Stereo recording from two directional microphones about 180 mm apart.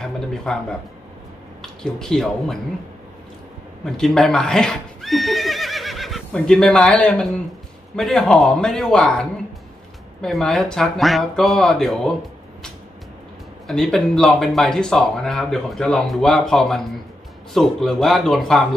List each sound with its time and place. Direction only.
0.0 s a sound: 5° left (ahead or behind)
1.6 s speech: 5° left (ahead or behind)
3.8 s speech: 5° left (ahead or behind)
13.7 s speech: centre (ahead or behind)